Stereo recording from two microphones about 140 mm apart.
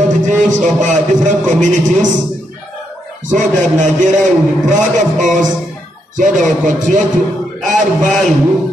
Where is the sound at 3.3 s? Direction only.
60° right (ahead or behind).